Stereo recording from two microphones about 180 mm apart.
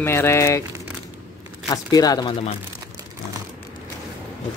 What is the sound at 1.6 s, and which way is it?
Speech, 20° left (ahead or behind).